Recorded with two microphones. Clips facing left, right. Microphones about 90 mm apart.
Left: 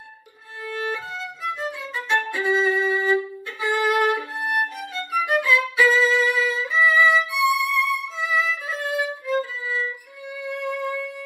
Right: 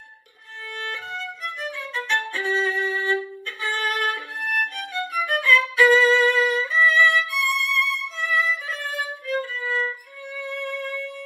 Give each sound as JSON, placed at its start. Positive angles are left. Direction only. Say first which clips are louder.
{"t": 0.7, "sound": "violin", "louder": "left 4 dB", "side_deg": 20}
{"t": 10.4, "sound": "music", "louder": "left 3 dB", "side_deg": 15}